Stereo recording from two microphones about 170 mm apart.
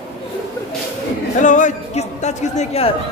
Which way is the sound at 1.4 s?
50° left (ahead or behind).